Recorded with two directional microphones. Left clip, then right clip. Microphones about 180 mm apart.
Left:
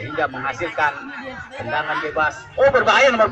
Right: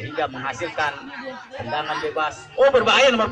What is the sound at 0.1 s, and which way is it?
A man's voice, 10° right (ahead or behind).